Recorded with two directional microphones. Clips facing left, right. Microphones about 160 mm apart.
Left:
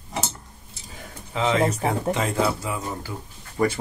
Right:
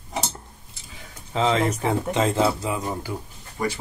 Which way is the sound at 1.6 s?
30° left (ahead or behind).